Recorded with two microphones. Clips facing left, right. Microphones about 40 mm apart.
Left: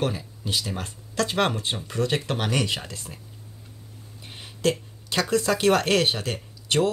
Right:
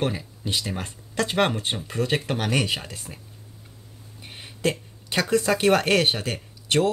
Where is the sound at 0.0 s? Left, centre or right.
Right.